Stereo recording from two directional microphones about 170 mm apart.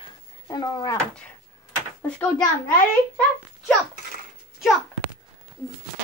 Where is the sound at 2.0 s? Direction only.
5° left (ahead or behind).